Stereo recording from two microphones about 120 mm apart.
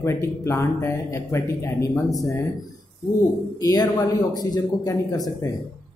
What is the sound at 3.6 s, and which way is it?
A man's voice, 30° left (ahead or behind).